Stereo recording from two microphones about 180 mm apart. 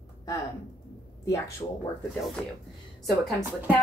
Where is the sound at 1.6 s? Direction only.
25° left (ahead or behind).